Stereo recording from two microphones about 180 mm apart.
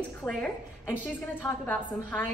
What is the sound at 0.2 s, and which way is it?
A woman's voice, 10° left (ahead or behind).